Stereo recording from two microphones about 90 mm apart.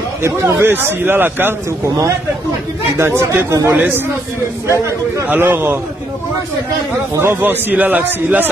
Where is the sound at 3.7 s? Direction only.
20° right (ahead or behind).